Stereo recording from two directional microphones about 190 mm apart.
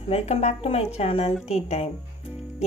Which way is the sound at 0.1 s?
35° left (ahead or behind).